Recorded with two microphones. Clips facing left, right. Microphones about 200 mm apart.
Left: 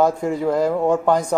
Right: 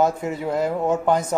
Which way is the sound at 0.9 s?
5° right (ahead or behind).